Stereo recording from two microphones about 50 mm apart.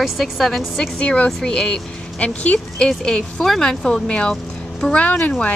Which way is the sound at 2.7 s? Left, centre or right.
Centre.